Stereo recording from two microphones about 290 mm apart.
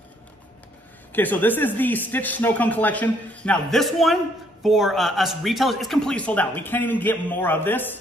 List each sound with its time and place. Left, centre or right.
1.1 s speech: centre